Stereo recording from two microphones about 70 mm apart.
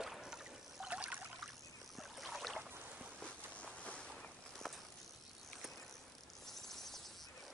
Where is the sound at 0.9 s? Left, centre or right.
Centre.